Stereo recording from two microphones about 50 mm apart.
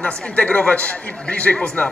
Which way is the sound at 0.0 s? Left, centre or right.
Left.